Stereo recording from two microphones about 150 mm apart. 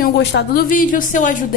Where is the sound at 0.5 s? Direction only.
65° left (ahead or behind).